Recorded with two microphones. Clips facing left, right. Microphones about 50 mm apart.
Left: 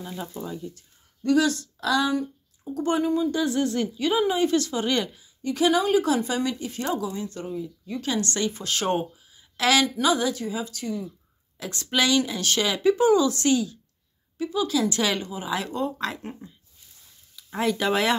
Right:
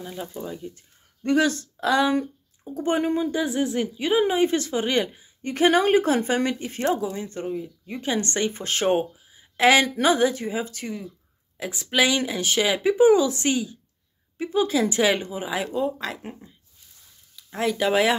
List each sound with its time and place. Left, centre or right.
0.0 s a woman's voice: centre
0.6 s speech: right
3.0 s speech: right
3.3 s a woman's voice: centre
5.4 s speech: right
9.8 s speech: right
11.6 s a woman's voice: centre
15.5 s speech: centre